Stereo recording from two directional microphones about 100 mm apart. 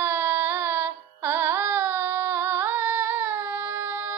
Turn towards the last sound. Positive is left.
turn(degrees=-20)  # may be behind; listen again after turning